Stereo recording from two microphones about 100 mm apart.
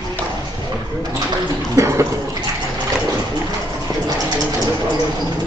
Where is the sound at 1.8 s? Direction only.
30° right (ahead or behind).